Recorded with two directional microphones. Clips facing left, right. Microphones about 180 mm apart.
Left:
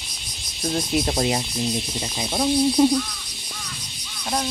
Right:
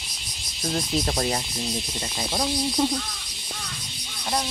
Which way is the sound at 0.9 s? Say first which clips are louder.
Left 4 dB; 15° left (ahead or behind).